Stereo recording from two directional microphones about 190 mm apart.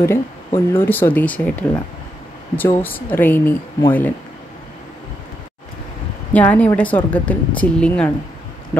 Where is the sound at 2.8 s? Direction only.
10° left (ahead or behind).